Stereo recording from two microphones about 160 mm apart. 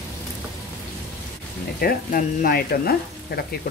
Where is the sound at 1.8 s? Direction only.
60° left (ahead or behind).